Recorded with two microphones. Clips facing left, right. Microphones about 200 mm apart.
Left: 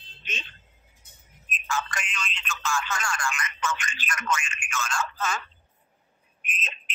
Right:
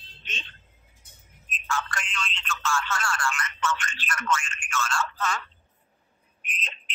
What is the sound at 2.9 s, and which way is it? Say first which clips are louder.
Speech: right 1 dB; 15° left (ahead or behind).